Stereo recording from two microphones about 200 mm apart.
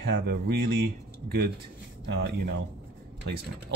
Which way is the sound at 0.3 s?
55° right (ahead or behind).